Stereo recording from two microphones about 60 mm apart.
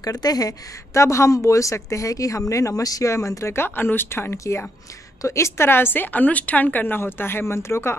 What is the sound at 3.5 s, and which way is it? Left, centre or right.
A woman's voice, left.